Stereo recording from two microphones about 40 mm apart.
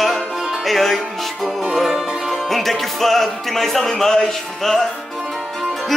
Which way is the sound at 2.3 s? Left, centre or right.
Centre.